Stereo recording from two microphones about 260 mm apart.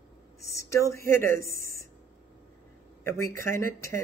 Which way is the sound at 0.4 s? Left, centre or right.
Centre.